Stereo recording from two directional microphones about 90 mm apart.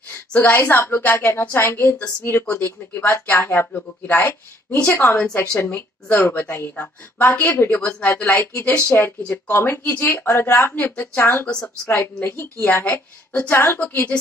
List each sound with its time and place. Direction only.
0.3 s a woman's voice: 20° left (ahead or behind)
11.4 s a woman's voice: 10° left (ahead or behind)